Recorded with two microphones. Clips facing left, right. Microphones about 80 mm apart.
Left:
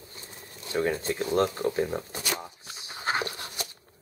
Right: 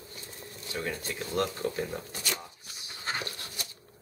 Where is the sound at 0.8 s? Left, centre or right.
Left.